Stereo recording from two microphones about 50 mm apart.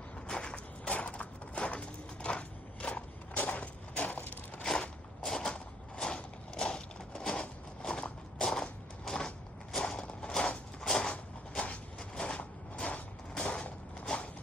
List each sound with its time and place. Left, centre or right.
0.3 s walk: centre
5.2 s crushing: centre
10.9 s a sound: centre